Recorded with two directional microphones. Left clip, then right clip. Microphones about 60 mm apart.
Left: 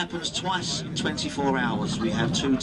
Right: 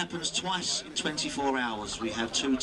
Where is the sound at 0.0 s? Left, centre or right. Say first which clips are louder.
Left 3 dB; centre.